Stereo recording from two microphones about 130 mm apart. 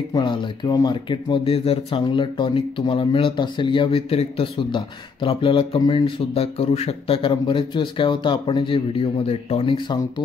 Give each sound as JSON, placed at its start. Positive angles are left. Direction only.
{"t": 0.1, "sound": "speech", "side_deg": 35}